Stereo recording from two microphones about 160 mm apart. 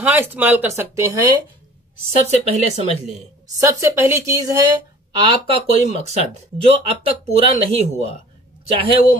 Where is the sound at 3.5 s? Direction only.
20° right (ahead or behind).